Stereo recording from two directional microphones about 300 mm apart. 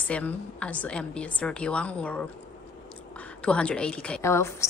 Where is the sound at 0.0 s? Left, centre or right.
Centre.